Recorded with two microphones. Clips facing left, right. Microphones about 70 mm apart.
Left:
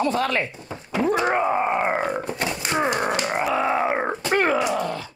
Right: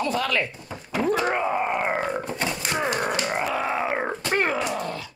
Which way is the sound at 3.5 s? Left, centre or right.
Centre.